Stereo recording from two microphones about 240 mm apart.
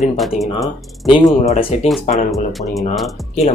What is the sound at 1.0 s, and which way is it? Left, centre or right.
Speech, centre.